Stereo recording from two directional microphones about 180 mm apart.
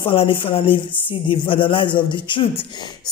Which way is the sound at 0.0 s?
30° left (ahead or behind).